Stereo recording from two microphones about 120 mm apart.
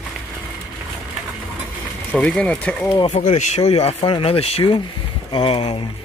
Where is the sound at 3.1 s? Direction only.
70° left (ahead or behind).